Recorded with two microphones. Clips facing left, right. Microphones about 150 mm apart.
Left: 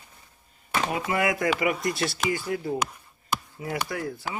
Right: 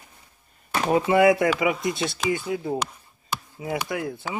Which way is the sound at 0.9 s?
25° right (ahead or behind).